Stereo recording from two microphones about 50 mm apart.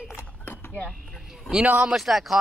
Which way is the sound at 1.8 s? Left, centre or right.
Centre.